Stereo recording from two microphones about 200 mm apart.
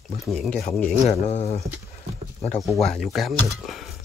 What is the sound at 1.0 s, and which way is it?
Speech, 30° left (ahead or behind).